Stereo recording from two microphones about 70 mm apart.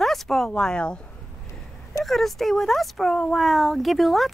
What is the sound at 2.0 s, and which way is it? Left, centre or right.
Speech, centre.